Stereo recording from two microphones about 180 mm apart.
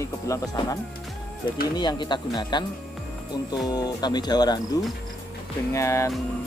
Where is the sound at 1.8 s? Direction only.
25° left (ahead or behind).